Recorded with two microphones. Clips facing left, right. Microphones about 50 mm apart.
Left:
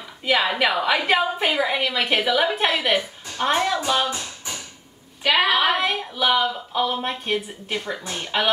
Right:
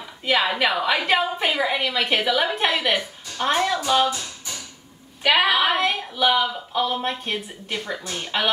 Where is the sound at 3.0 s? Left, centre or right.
Centre.